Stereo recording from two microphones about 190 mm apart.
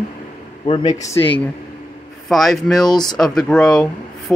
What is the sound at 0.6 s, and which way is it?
Speech, 25° left (ahead or behind).